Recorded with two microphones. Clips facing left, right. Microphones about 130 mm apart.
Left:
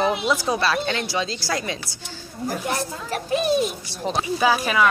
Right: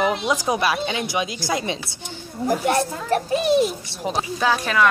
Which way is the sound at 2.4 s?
60° right (ahead or behind).